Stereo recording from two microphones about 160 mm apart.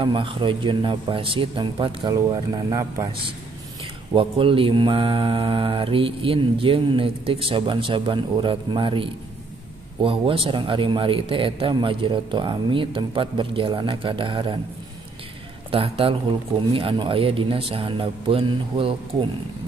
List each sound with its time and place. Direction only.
0.0 s mantra: 30° right (ahead or behind)
4.1 s mantra: 35° right (ahead or behind)
15.7 s mantra: 35° right (ahead or behind)